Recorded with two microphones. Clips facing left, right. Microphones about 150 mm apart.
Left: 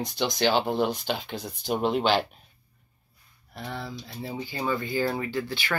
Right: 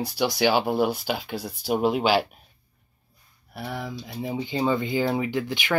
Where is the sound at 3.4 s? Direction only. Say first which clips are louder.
Right 3 dB; 10° right (ahead or behind).